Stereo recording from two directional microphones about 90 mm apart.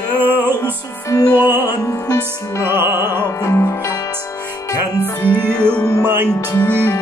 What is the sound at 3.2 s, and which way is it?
Music, 35° left (ahead or behind).